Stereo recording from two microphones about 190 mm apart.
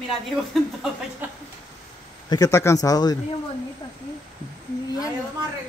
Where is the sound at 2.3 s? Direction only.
20° left (ahead or behind).